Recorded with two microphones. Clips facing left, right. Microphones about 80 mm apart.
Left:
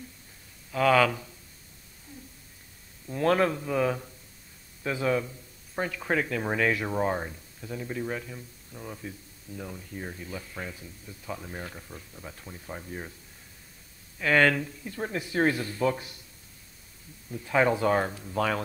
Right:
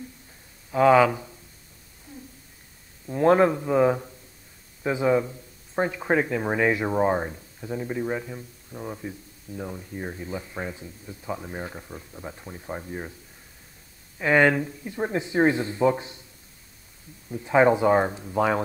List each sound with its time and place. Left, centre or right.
0.7 s speech: right
3.1 s speech: right
14.1 s speech: centre
17.3 s speech: right